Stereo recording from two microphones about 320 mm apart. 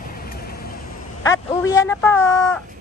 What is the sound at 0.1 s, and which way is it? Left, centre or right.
Vehicle, left.